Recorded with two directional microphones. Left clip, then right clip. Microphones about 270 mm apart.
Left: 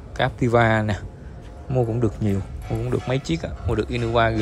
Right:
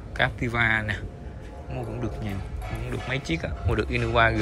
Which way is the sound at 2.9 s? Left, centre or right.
Centre.